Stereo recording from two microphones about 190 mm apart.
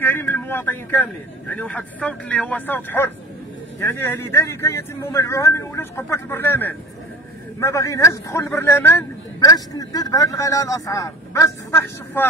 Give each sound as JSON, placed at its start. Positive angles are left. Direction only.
{"t": 0.0, "sound": "a man's voice", "side_deg": 10}